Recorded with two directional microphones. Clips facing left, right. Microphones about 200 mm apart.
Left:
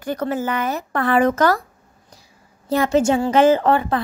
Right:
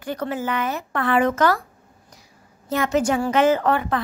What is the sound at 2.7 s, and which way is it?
A woman's voice, 30° left (ahead or behind).